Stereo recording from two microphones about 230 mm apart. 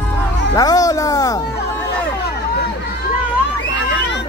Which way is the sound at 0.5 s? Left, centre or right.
Centre.